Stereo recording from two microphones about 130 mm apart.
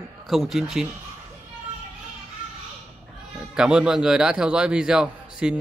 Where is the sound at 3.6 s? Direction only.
5° right (ahead or behind).